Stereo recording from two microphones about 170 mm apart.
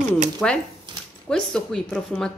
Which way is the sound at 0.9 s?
25° right (ahead or behind).